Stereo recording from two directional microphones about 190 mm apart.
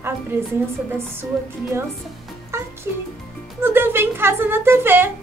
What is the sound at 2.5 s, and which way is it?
Music, 15° right (ahead or behind).